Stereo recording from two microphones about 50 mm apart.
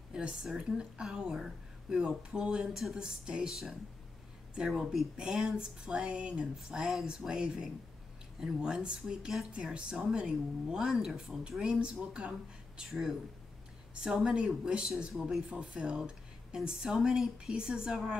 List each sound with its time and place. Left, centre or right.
0.1 s speech: centre
4.6 s speech: centre
14.0 s speech: centre